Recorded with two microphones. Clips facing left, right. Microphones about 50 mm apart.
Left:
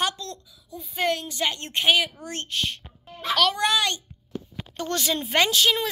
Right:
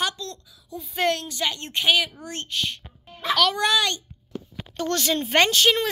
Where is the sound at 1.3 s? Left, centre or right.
Left.